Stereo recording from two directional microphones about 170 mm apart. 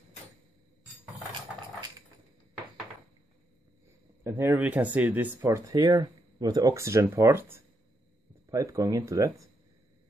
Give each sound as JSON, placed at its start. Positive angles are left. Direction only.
{"t": 4.2, "sound": "speech", "side_deg": -15}